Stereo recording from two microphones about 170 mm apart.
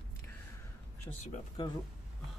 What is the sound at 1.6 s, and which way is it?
Speech, 30° left (ahead or behind).